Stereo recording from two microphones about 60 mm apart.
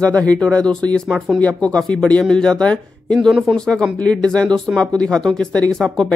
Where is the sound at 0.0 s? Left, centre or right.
Left.